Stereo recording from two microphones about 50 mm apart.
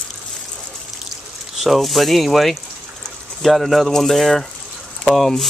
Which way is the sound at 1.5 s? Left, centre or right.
Centre.